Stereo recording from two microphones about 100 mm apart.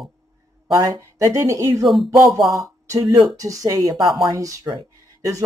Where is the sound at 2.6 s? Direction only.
30° right (ahead or behind).